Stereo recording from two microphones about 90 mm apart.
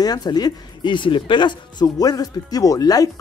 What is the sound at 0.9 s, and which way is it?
Speech, 65° left (ahead or behind).